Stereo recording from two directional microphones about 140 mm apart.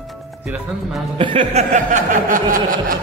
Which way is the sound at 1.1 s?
40° right (ahead or behind).